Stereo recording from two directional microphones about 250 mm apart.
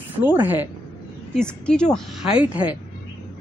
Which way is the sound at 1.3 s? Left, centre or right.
Centre.